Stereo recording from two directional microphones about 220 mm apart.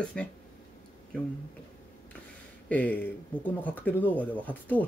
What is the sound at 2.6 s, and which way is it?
Speech, 5° left (ahead or behind).